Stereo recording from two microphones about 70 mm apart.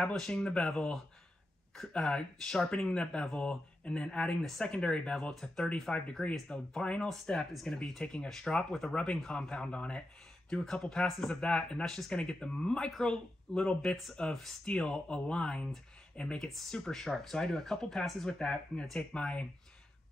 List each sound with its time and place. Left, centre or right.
0.0 s speech: centre